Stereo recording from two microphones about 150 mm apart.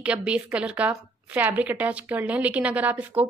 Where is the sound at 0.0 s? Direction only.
5° right (ahead or behind).